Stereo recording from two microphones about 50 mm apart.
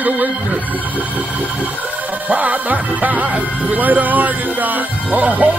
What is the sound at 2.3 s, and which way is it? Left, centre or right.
Speech, right.